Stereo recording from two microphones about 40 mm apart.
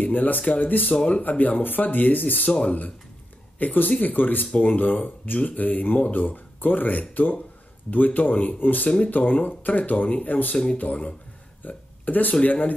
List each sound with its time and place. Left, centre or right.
0.0 s speech: left
11.6 s hiccup: left
12.4 s speech: left